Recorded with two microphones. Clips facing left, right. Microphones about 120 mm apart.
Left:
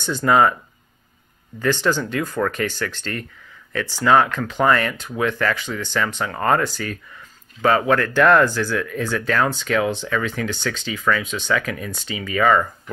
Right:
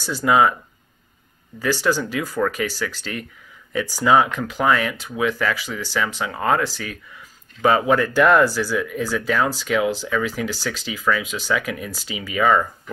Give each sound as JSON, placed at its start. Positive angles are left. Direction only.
{"t": 0.0, "sound": "speech", "side_deg": -5}
{"t": 1.6, "sound": "speech", "side_deg": -5}